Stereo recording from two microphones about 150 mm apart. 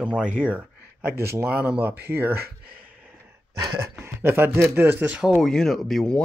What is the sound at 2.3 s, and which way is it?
Speech, 90° right.